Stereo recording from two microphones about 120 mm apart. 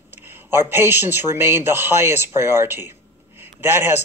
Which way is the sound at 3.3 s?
20° right (ahead or behind).